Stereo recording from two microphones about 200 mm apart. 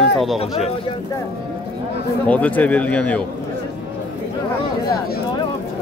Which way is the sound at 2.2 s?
10° left (ahead or behind).